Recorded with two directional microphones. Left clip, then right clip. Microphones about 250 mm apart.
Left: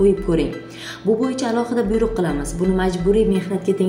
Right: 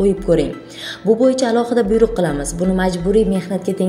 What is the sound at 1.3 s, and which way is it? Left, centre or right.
A woman's voice, right.